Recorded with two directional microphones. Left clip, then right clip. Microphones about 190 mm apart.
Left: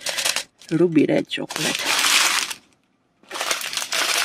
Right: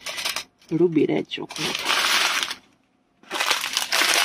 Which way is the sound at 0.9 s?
30° left (ahead or behind).